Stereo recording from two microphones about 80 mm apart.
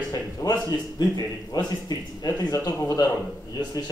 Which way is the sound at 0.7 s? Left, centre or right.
Left.